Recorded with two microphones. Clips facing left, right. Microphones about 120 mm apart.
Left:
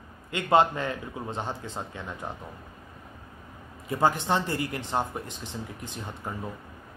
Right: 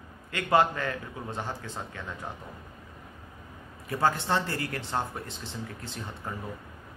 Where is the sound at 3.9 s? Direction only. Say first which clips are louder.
Left 2 dB; 20° left (ahead or behind).